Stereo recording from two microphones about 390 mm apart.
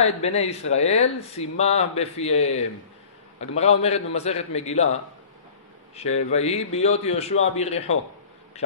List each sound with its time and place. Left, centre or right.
0.0 s a man's voice: centre
6.1 s speech: centre